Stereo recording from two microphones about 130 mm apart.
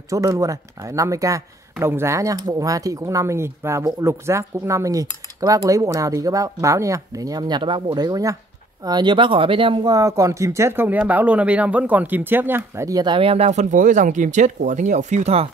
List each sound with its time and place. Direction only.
0.1 s speech: 25° right (ahead or behind); by 9.9 s 40° right (ahead or behind)
9.9 s speech: 25° right (ahead or behind); by 15.4 s 60° right (ahead or behind)